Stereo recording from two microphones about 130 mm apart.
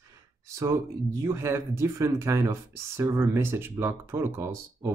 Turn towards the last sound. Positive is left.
turn(degrees=-20)  # may be behind; listen again after turning